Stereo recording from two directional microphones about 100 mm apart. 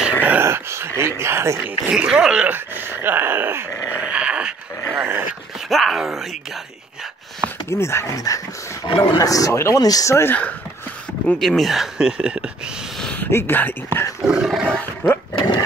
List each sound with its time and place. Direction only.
0.0 s a sound: 10° right (ahead or behind)
0.5 s a sound: 25° right (ahead or behind)
1.6 s speech: 10° right (ahead or behind)
4.0 s dog: 10° right (ahead or behind)
5.7 s speech: centre (ahead or behind)
7.7 s speech: 25° left (ahead or behind)
8.8 s speech: 60° left (ahead or behind)
9.2 s speech: 35° left (ahead or behind)
9.8 s speech: 40° left (ahead or behind)
11.3 s speech: centre (ahead or behind)
13.0 s a sound: 15° left (ahead or behind)
13.3 s speech: 20° left (ahead or behind)
14.2 s dog: 5° right (ahead or behind)
15.0 s speech: 25° left (ahead or behind)